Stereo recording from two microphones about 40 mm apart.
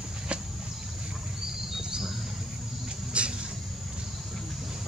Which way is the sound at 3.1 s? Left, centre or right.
Right.